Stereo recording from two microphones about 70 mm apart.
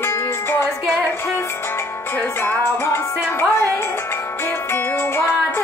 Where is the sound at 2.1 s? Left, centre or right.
Left.